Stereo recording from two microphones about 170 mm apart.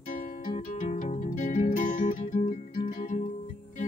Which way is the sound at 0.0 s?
50° left (ahead or behind).